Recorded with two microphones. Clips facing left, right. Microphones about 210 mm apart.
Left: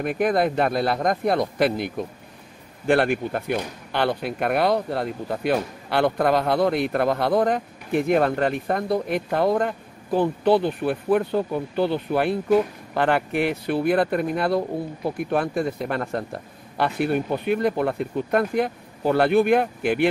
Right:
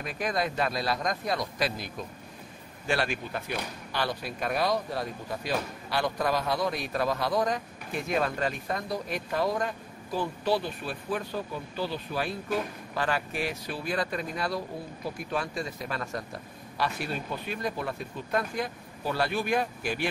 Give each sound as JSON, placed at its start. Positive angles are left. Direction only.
{"t": 0.0, "sound": "speech", "side_deg": 55}